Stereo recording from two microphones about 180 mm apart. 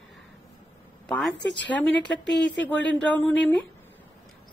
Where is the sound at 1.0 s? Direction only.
5° left (ahead or behind).